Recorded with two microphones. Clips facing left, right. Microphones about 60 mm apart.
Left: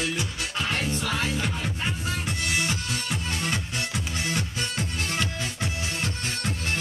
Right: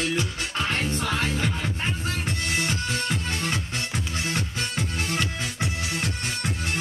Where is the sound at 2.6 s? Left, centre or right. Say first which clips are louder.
Right 2 dB; right.